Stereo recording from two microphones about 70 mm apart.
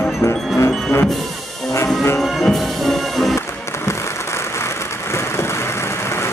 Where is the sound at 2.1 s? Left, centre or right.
Centre.